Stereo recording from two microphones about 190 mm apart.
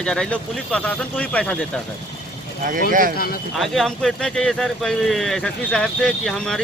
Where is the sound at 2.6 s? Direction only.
45° right (ahead or behind).